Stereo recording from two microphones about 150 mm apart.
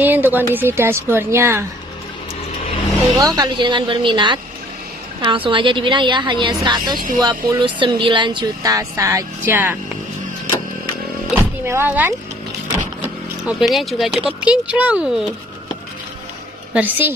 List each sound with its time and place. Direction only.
0.0 s speech: 15° right (ahead or behind)
3.2 s a woman's voice: 25° right (ahead or behind)
11.6 s speech: 15° right (ahead or behind)
13.5 s speech: centre (ahead or behind)
16.7 s speech: 10° right (ahead or behind)